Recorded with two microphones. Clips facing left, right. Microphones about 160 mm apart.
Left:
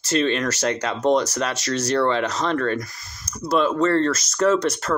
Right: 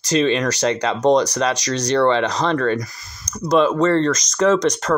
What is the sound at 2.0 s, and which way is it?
Speech, 90° right.